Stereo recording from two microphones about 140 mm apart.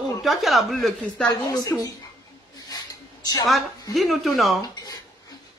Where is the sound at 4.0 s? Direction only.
Centre (ahead or behind).